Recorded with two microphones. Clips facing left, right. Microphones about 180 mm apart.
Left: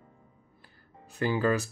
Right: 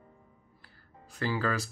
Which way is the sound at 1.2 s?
20° left (ahead or behind).